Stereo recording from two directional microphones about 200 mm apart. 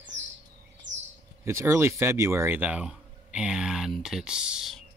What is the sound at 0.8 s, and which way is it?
Bird, 65° right (ahead or behind).